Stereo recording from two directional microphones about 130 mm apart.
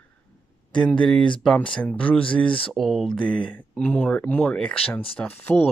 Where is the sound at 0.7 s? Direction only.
10° left (ahead or behind).